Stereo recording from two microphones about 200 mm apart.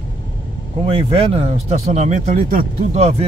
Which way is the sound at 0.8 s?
30° right (ahead or behind).